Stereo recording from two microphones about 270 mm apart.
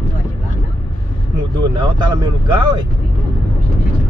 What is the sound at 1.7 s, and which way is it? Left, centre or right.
Vehicle, centre.